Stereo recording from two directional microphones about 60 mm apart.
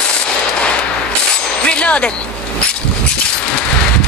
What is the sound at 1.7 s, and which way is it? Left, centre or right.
Music, centre.